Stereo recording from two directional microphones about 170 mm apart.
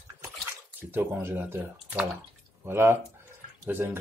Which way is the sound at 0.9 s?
10° right (ahead or behind).